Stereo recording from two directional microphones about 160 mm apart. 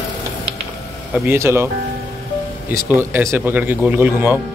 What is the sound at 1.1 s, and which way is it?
Speech, 15° right (ahead or behind).